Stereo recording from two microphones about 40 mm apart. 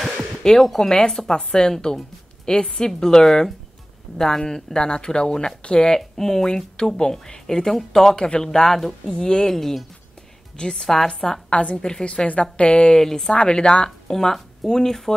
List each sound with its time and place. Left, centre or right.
0.4 s speech: centre
9.5 s speech: centre; by 13.0 s left
13.0 s speech: centre